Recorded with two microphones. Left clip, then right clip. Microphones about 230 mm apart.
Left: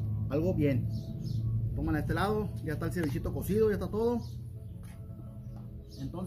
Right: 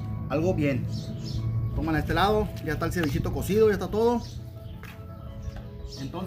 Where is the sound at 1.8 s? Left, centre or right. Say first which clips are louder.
Right 8 dB; centre.